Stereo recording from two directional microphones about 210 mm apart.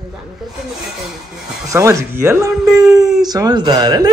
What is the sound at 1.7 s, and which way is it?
Speech, 15° right (ahead or behind).